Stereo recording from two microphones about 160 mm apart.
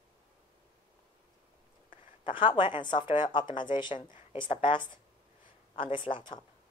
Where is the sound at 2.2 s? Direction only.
30° left (ahead or behind).